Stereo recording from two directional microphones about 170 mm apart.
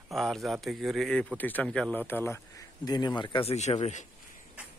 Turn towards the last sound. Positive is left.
turn(degrees=45)  # may be behind; listen again after turning